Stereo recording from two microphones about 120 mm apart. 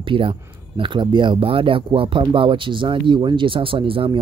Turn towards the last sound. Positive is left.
turn(degrees=-45)  # may be behind; listen again after turning